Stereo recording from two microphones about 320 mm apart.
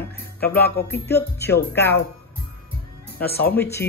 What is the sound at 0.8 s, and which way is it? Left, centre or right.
Speech, left.